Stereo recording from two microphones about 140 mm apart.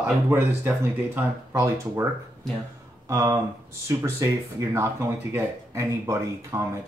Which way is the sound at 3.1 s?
20° right (ahead or behind).